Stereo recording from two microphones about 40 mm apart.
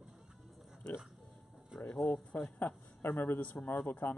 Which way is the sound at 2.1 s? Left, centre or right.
Centre.